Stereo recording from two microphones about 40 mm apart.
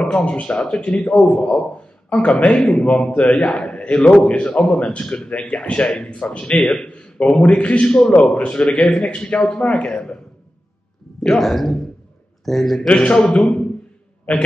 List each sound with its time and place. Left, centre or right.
0.1 s a man's voice: left
11.1 s speech: centre
12.8 s a man's voice: left